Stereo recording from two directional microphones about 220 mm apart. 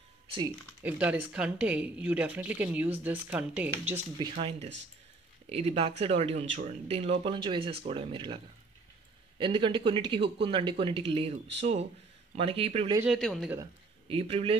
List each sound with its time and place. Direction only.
0.8 s a woman's voice: 5° right (ahead or behind)
4.2 s speech: 25° right (ahead or behind)
9.4 s speech: 20° right (ahead or behind)
12.4 s speech: 25° right (ahead or behind)
13.0 s speech: centre (ahead or behind)
13.6 s speech: 25° right (ahead or behind)